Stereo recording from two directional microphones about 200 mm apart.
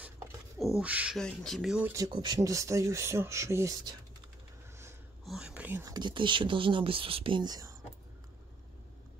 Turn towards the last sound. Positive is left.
turn(degrees=-20)  # may be behind; listen again after turning